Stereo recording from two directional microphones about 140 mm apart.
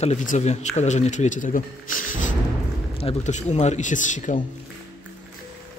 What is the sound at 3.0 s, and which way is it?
A man's voice, 55° left (ahead or behind).